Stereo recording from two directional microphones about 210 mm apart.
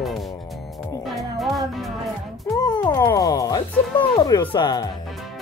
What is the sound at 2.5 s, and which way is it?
Speech, 20° left (ahead or behind).